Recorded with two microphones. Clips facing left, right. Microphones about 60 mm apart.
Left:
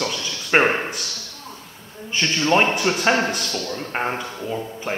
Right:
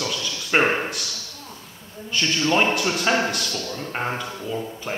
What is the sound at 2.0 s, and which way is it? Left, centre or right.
A man's voice, left.